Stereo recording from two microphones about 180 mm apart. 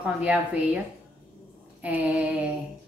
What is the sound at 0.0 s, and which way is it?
Speech, 5° right (ahead or behind).